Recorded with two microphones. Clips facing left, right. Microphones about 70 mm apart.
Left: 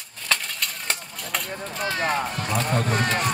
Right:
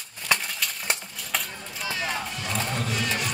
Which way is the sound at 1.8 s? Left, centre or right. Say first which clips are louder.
Left 5 dB; left.